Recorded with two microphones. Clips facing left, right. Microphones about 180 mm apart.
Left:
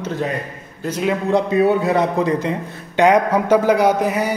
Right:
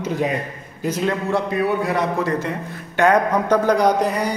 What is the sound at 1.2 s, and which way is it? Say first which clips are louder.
A man's voice: left 8 dB; 20° left (ahead or behind).